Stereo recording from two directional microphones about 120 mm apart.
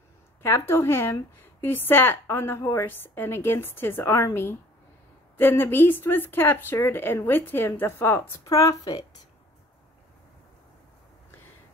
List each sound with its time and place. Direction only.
0.4 s a woman's voice: 20° left (ahead or behind)